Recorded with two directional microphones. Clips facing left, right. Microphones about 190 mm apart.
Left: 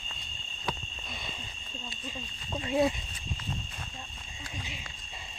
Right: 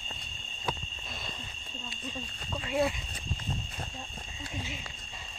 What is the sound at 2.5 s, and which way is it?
Speech, 20° left (ahead or behind).